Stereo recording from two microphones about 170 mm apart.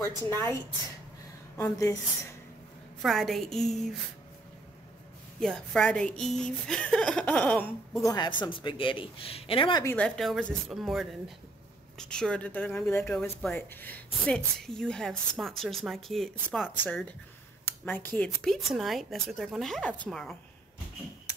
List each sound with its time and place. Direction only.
0.0 s speech: 20° left (ahead or behind)
1.6 s a man's voice: 20° left (ahead or behind)
3.0 s speech: centre (ahead or behind)
5.4 s speech: 5° left (ahead or behind)
8.0 s a man's voice: 25° left (ahead or behind)
9.8 s speech: 5° left (ahead or behind)
17.8 s speech: 10° left (ahead or behind)